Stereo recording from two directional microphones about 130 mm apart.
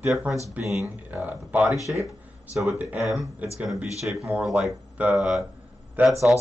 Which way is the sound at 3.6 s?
5° right (ahead or behind).